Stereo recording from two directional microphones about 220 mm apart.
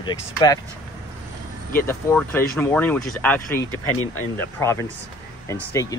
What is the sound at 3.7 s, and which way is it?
Speech, 70° left (ahead or behind).